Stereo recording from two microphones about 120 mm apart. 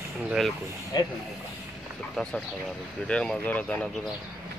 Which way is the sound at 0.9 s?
35° left (ahead or behind).